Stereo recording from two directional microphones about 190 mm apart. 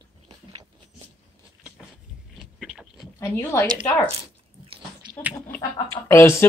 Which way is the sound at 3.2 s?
10° left (ahead or behind).